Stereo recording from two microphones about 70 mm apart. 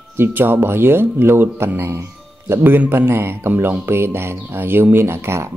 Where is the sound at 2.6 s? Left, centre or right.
Right.